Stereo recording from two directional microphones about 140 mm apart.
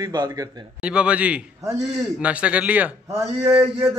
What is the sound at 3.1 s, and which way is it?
Speech, 20° right (ahead or behind).